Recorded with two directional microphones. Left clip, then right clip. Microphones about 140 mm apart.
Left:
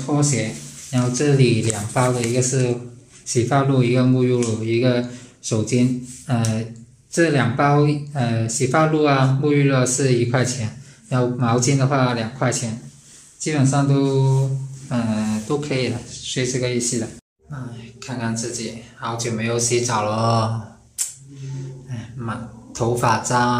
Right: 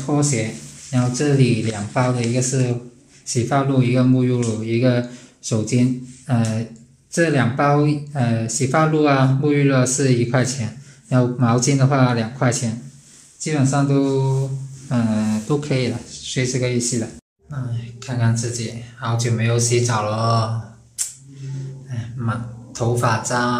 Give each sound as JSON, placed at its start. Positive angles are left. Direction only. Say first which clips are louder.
{"t": 0.0, "sound": "speech", "louder": "right 1 dB", "side_deg": 0}
{"t": 0.9, "sound": "a man's voice", "louder": "even", "side_deg": 15}
{"t": 21.0, "sound": "a sound", "louder": "even", "side_deg": 15}
{"t": 21.9, "sound": "speech", "louder": "right 2 dB", "side_deg": 10}